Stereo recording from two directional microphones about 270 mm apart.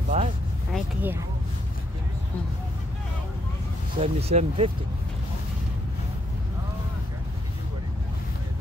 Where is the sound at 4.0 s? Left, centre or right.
Right.